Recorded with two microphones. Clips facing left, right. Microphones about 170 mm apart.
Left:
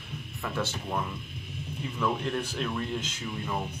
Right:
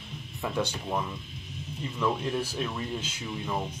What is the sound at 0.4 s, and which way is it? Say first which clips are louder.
Speech: right 2 dB; 15° right (ahead or behind).